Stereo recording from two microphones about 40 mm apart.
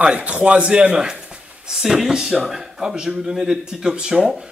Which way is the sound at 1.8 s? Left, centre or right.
Centre.